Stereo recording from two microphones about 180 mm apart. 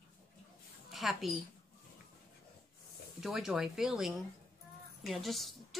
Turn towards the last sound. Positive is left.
turn(degrees=0)  # may be behind; listen again after turning